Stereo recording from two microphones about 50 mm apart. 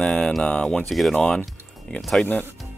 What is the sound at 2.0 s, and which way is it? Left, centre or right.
Speech, centre.